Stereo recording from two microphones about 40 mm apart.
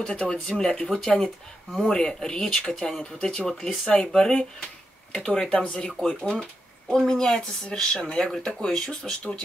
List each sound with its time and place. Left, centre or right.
0.0 s speech: left
3.9 s speech: left